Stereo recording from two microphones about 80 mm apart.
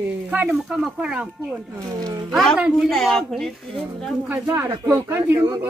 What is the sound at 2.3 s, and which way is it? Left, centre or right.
A woman's voice, centre.